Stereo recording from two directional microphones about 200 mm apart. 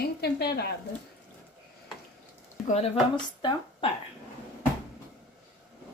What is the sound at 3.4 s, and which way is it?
Speech, 25° left (ahead or behind).